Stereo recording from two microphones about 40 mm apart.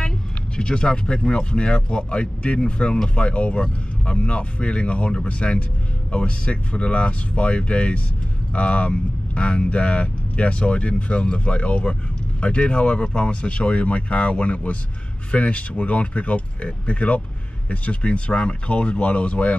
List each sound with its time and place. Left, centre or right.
0.6 s speech: left